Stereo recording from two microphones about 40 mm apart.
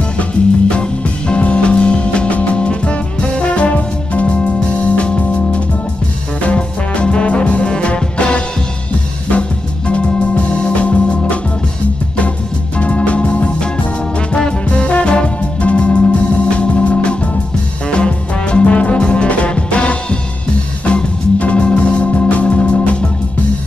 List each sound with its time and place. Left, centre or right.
0.2 s music: left
9.3 s organ: left
12.7 s music: left
20.8 s organ: left